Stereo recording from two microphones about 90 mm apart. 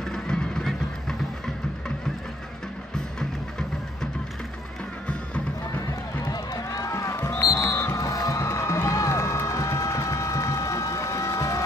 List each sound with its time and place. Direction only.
0.0 s music: 10° left (ahead or behind)
3.2 s music: 5° left (ahead or behind)
6.2 s music: 45° left (ahead or behind)
7.3 s music: 45° left (ahead or behind)
7.6 s music: 25° left (ahead or behind)
8.0 s crowd: 40° left (ahead or behind)